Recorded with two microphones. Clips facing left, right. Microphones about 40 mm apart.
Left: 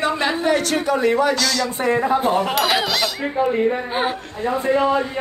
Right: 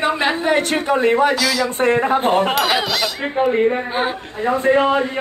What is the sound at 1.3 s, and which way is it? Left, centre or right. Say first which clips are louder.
Speech: right 2 dB; centre.